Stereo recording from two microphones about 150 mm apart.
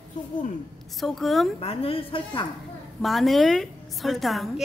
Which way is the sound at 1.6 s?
40° left (ahead or behind).